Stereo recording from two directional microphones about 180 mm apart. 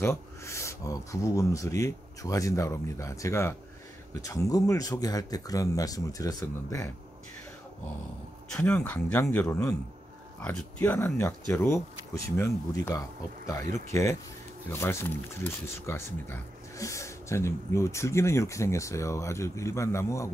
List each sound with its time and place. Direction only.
0.0 s speech: 15° left (ahead or behind)
8.5 s speech: 10° left (ahead or behind)
14.7 s speech: 15° left (ahead or behind)